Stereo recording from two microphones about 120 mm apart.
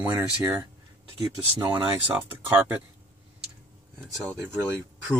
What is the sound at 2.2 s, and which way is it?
Speech, 15° right (ahead or behind).